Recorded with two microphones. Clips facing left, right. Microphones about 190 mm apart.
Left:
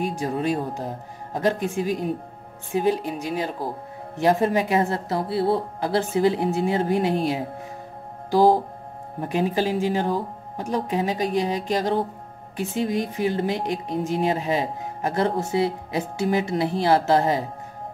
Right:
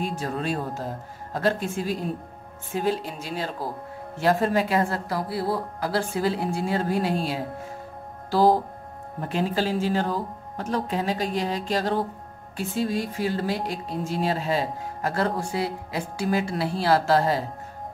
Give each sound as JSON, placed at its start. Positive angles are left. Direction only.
{"t": 0.0, "sound": "speech", "side_deg": 15}